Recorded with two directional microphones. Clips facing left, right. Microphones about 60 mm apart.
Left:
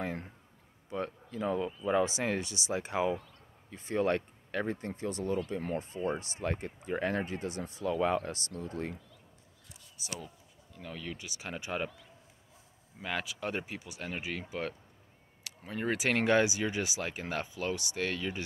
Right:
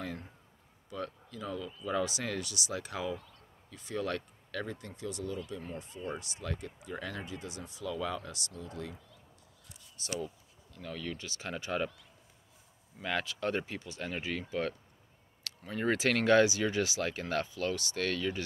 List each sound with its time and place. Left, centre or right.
0.0 s speech: left
5.5 s speech: left
5.8 s speech: left
9.9 s speech: centre
13.0 s speech: centre
15.4 s a sound: centre
15.8 s speech: centre
16.1 s speech: centre